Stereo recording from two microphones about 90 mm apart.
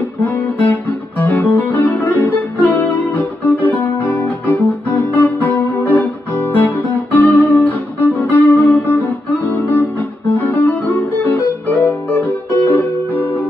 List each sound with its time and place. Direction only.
0.2 s music: 20° left (ahead or behind)